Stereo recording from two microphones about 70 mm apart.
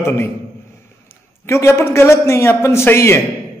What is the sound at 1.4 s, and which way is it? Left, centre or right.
A man's voice, left.